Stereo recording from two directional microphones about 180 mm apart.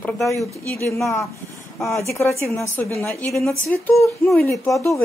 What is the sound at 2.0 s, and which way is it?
Speech, 15° left (ahead or behind).